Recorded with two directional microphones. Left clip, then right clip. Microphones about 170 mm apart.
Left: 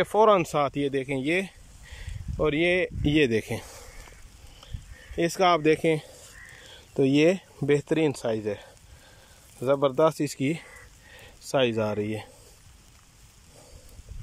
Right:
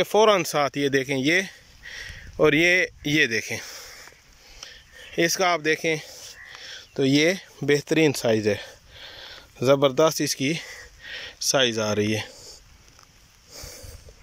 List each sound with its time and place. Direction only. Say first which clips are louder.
0.0 s speech: right 2 dB; centre (ahead or behind)
3.0 s speech: right 1 dB; 15° left (ahead or behind)
4.6 s a sound: right 8 dB; 10° left (ahead or behind)
7.0 s speech: right 1 dB; 15° left (ahead or behind)
7.6 s speech: right 3 dB; centre (ahead or behind)